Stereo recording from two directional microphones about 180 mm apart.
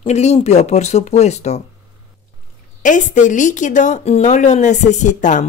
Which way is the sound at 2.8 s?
45° left (ahead or behind).